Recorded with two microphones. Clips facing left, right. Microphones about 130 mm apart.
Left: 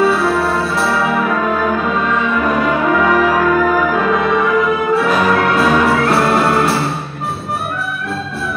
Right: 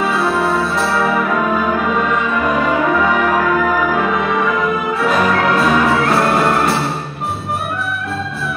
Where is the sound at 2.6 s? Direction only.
Centre (ahead or behind).